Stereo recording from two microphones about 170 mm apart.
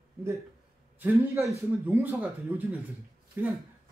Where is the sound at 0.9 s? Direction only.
15° right (ahead or behind).